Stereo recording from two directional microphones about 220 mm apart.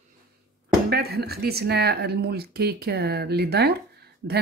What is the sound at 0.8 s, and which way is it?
Speech, 45° right (ahead or behind).